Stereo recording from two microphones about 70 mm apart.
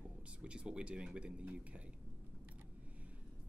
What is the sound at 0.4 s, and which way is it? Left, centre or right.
Speech, centre.